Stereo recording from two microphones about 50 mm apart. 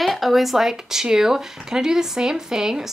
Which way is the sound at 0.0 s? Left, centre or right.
Centre.